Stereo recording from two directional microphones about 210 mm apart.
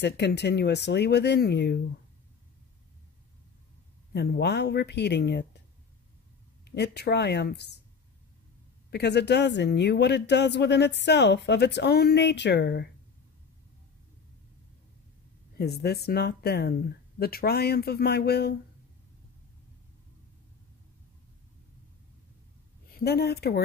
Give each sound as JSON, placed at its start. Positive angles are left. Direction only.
{"t": 0.0, "sound": "speech", "side_deg": 55}
{"t": 4.1, "sound": "speech", "side_deg": 50}
{"t": 6.6, "sound": "speech", "side_deg": 50}
{"t": 8.9, "sound": "speech", "side_deg": 55}
{"t": 15.5, "sound": "speech", "side_deg": 50}
{"t": 22.9, "sound": "speech", "side_deg": 50}